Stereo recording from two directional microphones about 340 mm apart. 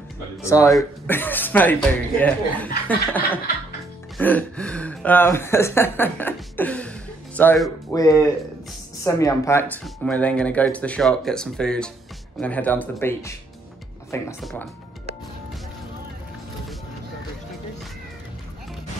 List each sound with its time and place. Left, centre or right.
0.4 s speech: centre